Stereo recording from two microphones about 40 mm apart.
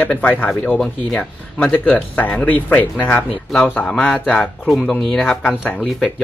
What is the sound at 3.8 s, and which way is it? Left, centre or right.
Speech, left.